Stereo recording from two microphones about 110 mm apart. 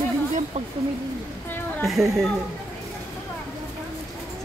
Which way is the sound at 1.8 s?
Centre (ahead or behind).